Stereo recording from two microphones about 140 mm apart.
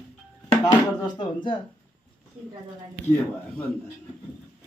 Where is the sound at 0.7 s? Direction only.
30° left (ahead or behind).